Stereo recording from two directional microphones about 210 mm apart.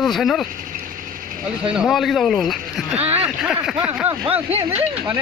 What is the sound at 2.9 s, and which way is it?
Music, 30° right (ahead or behind).